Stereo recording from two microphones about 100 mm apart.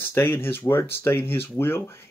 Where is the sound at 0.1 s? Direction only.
25° left (ahead or behind).